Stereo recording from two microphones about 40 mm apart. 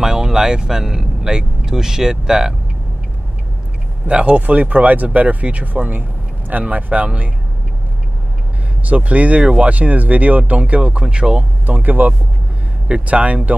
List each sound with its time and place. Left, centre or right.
0.0 s speech: centre
4.1 s speech: right
6.6 s speech: right
8.8 s speech: right
11.6 s speech: right
13.0 s speech: right